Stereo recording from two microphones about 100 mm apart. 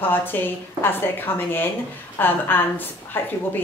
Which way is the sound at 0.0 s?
20° left (ahead or behind).